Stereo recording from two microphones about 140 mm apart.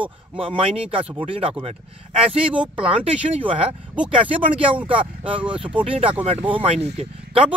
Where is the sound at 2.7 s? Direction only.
40° right (ahead or behind).